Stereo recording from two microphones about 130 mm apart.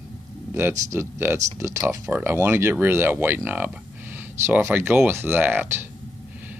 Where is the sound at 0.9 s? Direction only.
20° right (ahead or behind).